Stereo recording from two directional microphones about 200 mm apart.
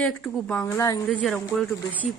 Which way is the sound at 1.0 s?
Centre (ahead or behind).